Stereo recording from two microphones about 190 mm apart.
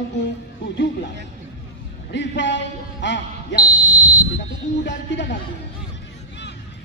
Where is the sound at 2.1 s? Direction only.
70° left (ahead or behind).